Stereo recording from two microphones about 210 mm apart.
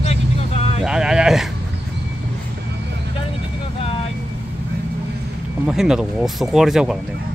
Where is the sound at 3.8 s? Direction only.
25° left (ahead or behind).